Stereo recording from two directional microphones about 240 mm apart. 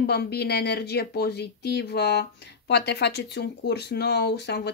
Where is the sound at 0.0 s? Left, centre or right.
Left.